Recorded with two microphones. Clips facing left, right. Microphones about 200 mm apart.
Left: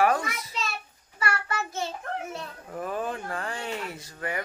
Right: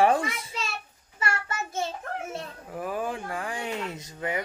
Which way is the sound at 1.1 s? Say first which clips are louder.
Left 1 dB; 25° right (ahead or behind).